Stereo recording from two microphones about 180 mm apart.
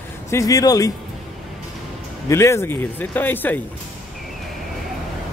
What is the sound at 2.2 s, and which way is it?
Speech, 15° left (ahead or behind).